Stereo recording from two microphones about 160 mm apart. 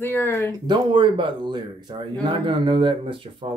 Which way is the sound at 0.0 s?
15° left (ahead or behind).